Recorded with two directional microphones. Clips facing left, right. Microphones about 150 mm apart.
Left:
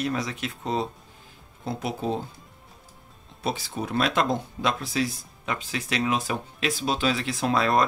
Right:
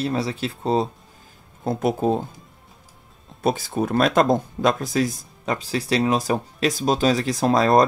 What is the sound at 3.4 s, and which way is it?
Speech, 50° right (ahead or behind).